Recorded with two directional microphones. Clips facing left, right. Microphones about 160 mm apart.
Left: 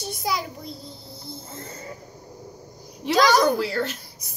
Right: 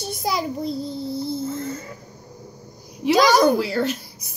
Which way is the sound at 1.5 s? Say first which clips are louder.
Right 8 dB; 30° left (ahead or behind).